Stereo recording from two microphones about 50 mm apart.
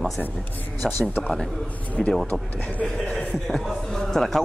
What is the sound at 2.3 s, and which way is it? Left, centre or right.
Speech, left.